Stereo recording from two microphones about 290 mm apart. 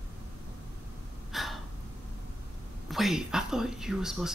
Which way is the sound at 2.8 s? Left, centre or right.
Centre.